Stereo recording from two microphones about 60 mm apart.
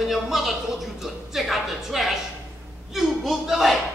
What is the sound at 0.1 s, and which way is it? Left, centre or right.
Speech, centre.